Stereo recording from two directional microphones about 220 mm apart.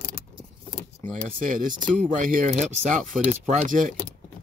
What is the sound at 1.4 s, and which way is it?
Speech, 35° right (ahead or behind).